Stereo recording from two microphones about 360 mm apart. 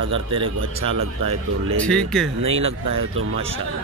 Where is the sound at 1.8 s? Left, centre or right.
Centre.